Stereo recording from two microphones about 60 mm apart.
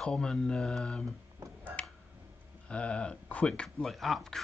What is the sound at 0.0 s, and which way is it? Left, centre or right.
Speech, centre.